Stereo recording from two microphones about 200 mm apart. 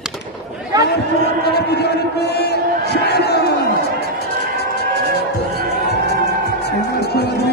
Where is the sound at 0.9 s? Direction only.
55° left (ahead or behind).